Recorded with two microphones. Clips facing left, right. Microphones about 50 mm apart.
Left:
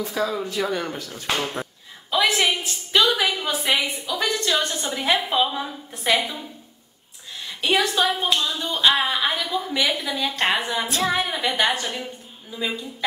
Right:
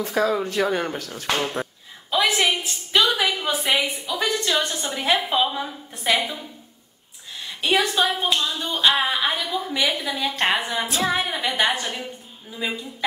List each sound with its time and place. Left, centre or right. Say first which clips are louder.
0.0 s speech: right 3 dB; right
0.9 s speech: right 2 dB; right
1.3 s a woman's voice: right 1 dB; centre
7.4 s a sound: even; centre
7.9 s a woman's voice: even; centre